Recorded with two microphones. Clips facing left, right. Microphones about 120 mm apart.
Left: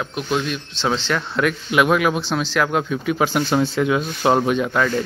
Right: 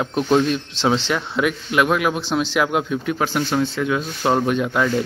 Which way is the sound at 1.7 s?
5° left (ahead or behind).